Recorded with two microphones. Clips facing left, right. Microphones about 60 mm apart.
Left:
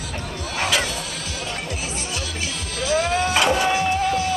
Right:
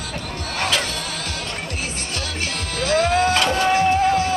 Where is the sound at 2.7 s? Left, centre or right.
Right.